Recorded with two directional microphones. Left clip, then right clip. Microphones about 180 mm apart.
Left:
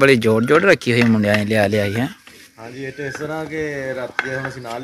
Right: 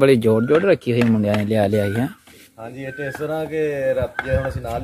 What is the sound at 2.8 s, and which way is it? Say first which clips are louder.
Speech: left 1 dB; 65° right (ahead or behind).